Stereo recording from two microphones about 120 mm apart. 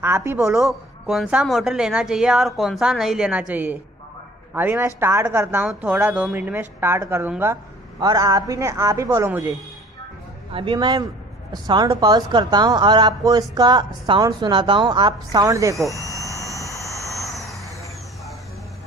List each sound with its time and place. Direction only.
0.0 s speech: 20° right (ahead or behind)
0.5 s a woman's voice: 5° right (ahead or behind); by 5.7 s 20° right (ahead or behind)
5.7 s a woman's voice: 10° right (ahead or behind)
8.0 s speech: 30° right (ahead or behind)
10.5 s a woman's voice: 45° right (ahead or behind)
15.4 s speech: 25° right (ahead or behind)
16.0 s a sound: 25° left (ahead or behind)
16.9 s vehicle: 25° left (ahead or behind)
17.3 s vehicle: centre (ahead or behind)